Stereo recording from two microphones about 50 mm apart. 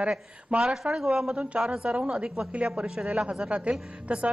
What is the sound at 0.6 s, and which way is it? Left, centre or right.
Speech, centre.